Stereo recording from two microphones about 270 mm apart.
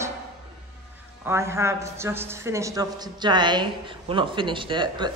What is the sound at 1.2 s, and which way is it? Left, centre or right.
Speech, centre.